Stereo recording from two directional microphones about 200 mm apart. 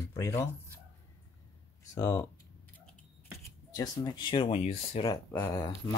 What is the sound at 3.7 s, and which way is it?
Speech, 20° left (ahead or behind).